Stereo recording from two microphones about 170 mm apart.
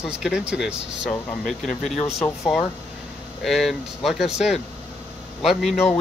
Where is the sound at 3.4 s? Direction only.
Centre (ahead or behind).